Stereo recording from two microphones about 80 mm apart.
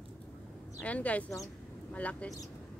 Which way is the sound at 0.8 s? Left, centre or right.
Centre.